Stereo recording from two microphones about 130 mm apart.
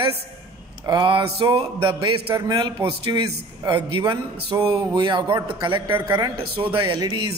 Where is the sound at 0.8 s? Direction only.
35° right (ahead or behind).